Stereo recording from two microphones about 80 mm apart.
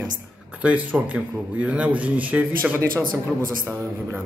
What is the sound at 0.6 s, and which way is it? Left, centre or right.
A man's voice, centre.